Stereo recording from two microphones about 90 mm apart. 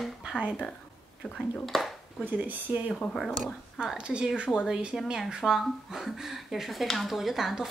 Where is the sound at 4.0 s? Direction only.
10° right (ahead or behind).